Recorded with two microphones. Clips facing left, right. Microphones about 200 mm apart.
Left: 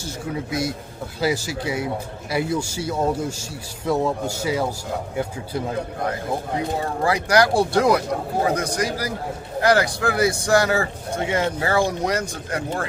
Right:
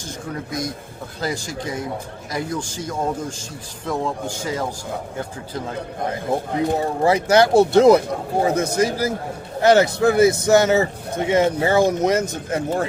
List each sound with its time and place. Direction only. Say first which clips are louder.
0.0 s speech: left 2 dB; 5° left (ahead or behind)
7.0 s speech: right 3 dB; 25° right (ahead or behind)